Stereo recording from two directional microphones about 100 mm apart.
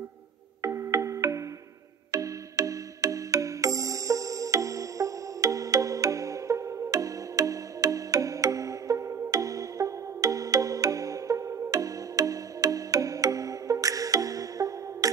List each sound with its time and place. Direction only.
0.6 s music: 30° right (ahead or behind)